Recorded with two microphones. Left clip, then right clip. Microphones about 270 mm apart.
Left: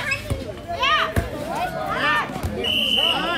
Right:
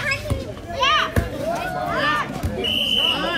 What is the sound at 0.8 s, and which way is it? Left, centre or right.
Children playing, centre.